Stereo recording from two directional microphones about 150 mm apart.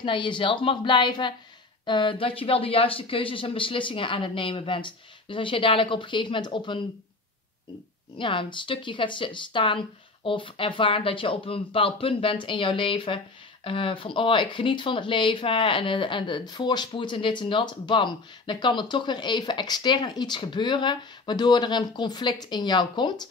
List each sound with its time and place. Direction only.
0.0 s speech: 30° left (ahead or behind)
8.2 s speech: 35° left (ahead or behind)